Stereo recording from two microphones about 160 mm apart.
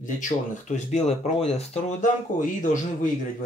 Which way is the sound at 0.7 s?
45° left (ahead or behind).